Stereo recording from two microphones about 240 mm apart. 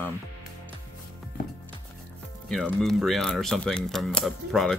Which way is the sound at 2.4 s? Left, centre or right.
Centre.